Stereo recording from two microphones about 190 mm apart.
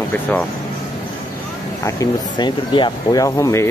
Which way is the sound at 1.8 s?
20° left (ahead or behind).